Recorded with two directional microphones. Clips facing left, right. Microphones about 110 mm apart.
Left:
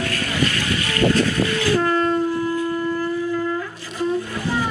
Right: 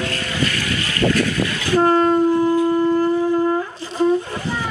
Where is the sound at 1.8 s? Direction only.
35° right (ahead or behind).